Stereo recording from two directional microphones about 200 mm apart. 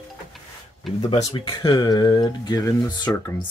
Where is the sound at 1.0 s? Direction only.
25° left (ahead or behind).